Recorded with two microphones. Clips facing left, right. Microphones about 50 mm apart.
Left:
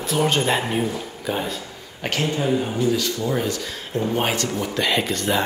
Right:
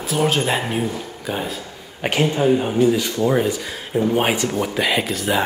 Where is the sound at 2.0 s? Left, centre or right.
Centre.